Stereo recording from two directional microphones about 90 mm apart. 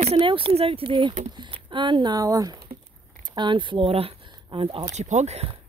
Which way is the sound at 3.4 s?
60° right (ahead or behind).